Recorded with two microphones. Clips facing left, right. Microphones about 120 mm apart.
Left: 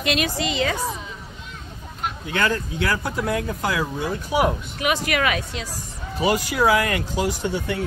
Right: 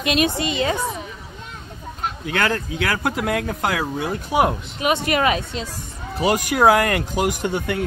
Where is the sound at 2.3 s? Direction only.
55° right (ahead or behind).